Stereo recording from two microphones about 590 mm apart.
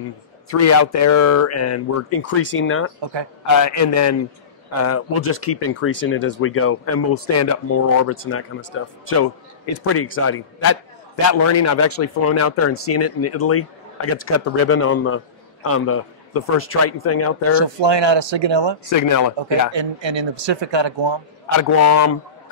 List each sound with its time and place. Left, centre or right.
0.5 s speech: left
3.0 s speech: right
3.4 s speech: left
17.6 s speech: right
18.9 s speech: left
19.7 s speech: right
21.5 s speech: left